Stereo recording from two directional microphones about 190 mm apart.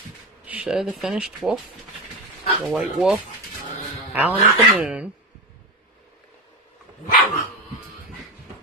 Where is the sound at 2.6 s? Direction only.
Centre (ahead or behind).